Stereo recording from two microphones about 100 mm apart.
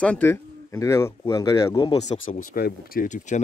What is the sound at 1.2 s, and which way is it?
Speech, 40° left (ahead or behind).